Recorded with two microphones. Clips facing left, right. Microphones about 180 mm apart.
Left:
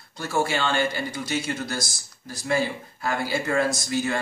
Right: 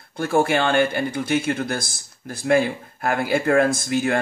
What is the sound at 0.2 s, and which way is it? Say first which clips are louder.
Speech: right 6 dB; 55° right (ahead or behind).